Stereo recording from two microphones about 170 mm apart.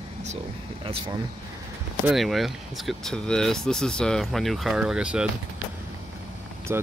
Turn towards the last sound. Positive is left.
turn(degrees=-15)  # may be behind; listen again after turning